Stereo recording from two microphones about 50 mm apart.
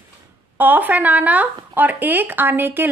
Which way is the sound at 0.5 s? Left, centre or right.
Right.